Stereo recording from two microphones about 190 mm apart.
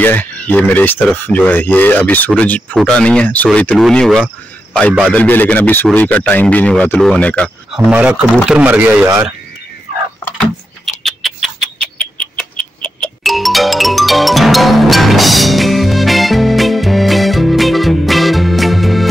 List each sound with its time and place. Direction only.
0.0 s speech: 10° left (ahead or behind)
7.9 s speech: 5° right (ahead or behind)
11.1 s a sound: centre (ahead or behind)
12.8 s music: centre (ahead or behind)